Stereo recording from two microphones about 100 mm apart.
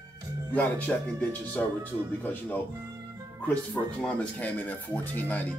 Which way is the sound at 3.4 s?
15° left (ahead or behind).